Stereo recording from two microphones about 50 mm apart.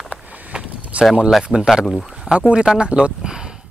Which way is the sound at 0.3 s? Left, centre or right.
Right.